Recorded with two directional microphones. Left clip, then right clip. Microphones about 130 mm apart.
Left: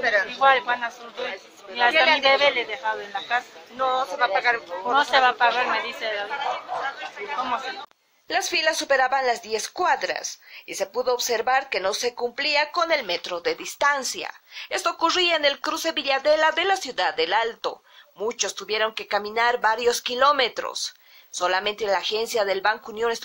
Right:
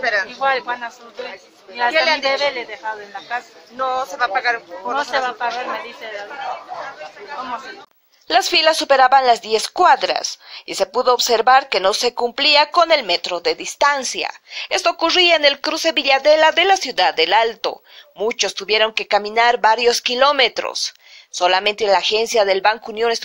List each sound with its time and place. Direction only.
0.0 s a man's voice: 35° right (ahead or behind)
0.4 s speech: 10° right (ahead or behind)
2.0 s a man's voice: 30° right (ahead or behind)
2.2 s speech: centre (ahead or behind)
3.7 s speech: 25° right (ahead or behind)
4.9 s a woman's voice: 10° left (ahead or behind)
8.3 s speech: 30° right (ahead or behind)